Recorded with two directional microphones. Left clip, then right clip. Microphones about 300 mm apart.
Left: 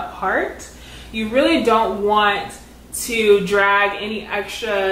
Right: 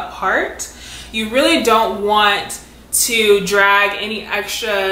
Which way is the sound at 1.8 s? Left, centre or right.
Centre.